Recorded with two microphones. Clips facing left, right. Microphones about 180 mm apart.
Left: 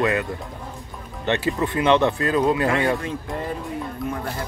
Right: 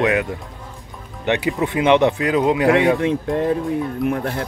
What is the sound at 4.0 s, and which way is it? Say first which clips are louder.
Speech: right 7 dB; 65° right (ahead or behind).